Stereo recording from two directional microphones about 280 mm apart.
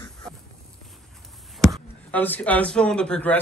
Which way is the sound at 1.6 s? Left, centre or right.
Centre.